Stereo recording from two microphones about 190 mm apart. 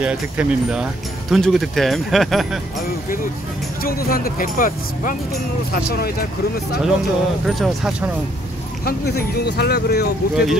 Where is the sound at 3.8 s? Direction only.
50° left (ahead or behind).